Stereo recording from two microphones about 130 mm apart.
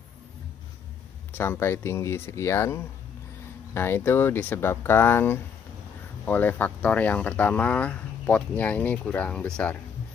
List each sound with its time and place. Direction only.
1.3 s speech: 15° left (ahead or behind)